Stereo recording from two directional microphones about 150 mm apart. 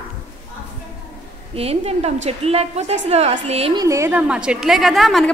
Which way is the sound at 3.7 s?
20° right (ahead or behind).